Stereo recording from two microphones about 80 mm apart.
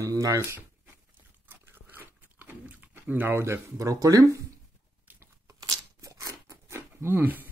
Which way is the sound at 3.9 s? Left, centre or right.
Right.